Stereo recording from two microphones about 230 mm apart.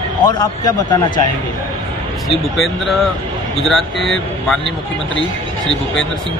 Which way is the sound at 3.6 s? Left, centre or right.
Centre.